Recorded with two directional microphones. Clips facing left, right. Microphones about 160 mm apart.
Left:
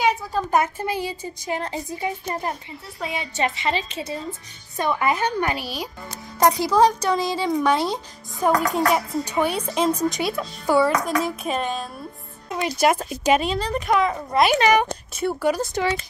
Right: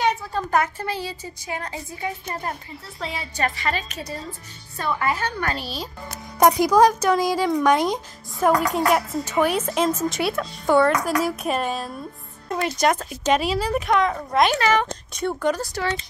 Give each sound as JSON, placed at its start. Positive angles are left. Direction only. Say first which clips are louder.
{"t": 0.0, "sound": "a woman's voice", "louder": "left 1 dB", "side_deg": 10}
{"t": 6.4, "sound": "speech", "louder": "right 2 dB", "side_deg": -15}
{"t": 8.3, "sound": "speech", "louder": "right 1 dB", "side_deg": 0}
{"t": 13.4, "sound": "speech", "louder": "right 1 dB", "side_deg": -5}
{"t": 15.6, "sound": "a woman's voice", "louder": "left 3 dB", "side_deg": 20}